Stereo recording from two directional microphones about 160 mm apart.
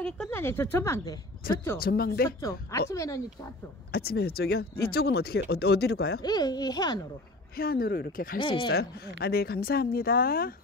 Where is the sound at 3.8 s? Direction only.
75° left (ahead or behind).